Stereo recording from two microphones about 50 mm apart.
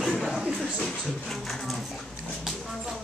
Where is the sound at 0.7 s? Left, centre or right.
Centre.